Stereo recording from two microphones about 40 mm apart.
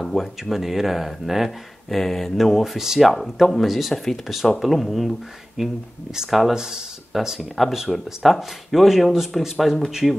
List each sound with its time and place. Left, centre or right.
0.0 s speech: centre
2.0 s speech: centre
3.9 s speech: centre
5.6 s speech: centre
6.5 s speech: centre
7.1 s speech: centre